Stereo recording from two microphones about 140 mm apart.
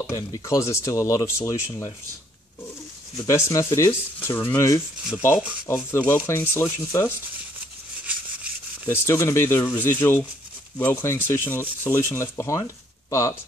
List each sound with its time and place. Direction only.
0.1 s speech: 20° left (ahead or behind)
3.3 s speech: 20° left (ahead or behind)
8.8 s speech: 20° left (ahead or behind)